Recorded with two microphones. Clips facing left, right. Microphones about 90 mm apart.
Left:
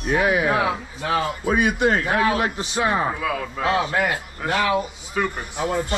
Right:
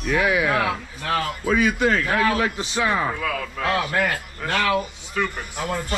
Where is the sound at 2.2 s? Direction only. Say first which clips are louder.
Even; 20° left (ahead or behind).